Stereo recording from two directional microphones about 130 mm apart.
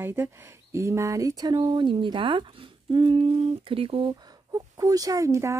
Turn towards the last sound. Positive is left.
turn(degrees=-25)  # may be behind; listen again after turning